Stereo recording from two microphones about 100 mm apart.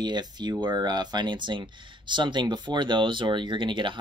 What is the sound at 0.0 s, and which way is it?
Speech, 45° right (ahead or behind).